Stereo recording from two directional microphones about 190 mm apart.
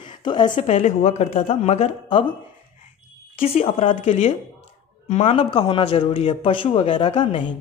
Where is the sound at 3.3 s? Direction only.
30° left (ahead or behind).